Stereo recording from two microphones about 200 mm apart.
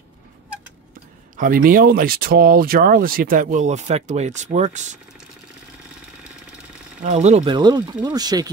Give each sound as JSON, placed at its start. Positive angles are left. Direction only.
{"t": 1.3, "sound": "speech", "side_deg": -45}
{"t": 7.1, "sound": "speech", "side_deg": -35}
{"t": 7.5, "sound": "speech", "side_deg": -20}